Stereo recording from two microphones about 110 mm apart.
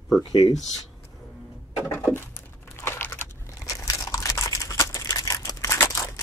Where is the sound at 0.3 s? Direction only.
35° left (ahead or behind).